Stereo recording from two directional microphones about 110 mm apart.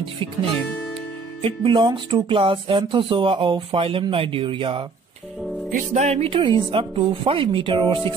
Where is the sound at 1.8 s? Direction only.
50° right (ahead or behind).